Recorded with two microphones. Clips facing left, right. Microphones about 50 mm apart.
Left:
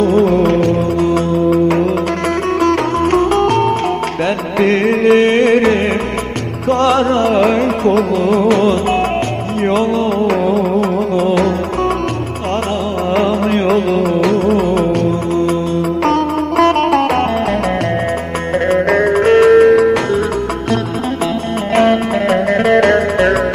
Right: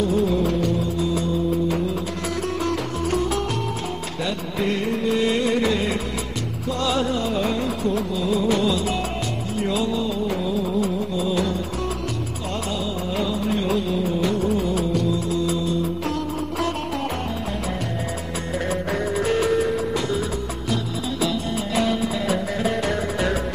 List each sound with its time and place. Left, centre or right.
0.0 s music: left
2.6 s music: left
4.6 s music: left
13.1 s music of bollywood: left
16.1 s music: left
18.7 s music: left
21.7 s music: left